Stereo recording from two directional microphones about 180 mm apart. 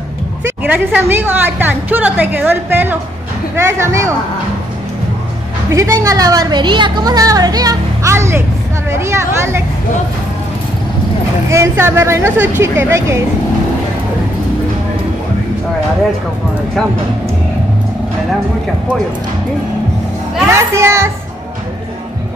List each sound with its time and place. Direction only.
0.7 s a woman's voice: 10° right (ahead or behind)
5.7 s a woman's voice: 15° right (ahead or behind)
11.5 s a woman's voice: 15° right (ahead or behind)
20.5 s a woman's voice: 15° right (ahead or behind)